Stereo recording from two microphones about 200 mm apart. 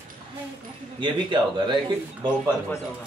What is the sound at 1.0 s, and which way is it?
A man's voice, 25° right (ahead or behind).